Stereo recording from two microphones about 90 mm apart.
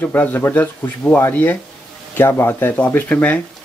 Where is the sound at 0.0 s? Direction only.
20° left (ahead or behind).